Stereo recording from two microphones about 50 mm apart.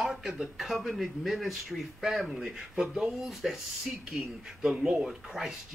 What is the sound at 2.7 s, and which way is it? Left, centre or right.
Speech, right.